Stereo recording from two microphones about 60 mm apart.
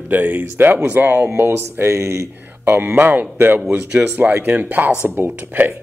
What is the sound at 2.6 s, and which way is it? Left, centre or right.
Speech, right.